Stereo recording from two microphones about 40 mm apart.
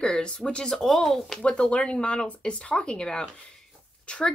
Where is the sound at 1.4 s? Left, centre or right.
Left.